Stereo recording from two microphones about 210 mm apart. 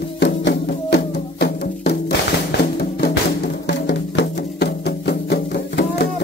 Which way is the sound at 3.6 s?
55° left (ahead or behind).